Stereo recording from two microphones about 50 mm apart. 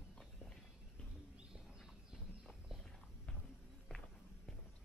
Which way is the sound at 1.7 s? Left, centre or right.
Centre.